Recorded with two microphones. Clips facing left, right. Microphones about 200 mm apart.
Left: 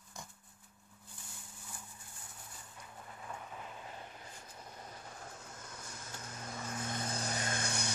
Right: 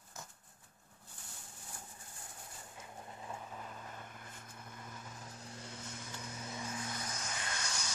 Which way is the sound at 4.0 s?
50° right (ahead or behind).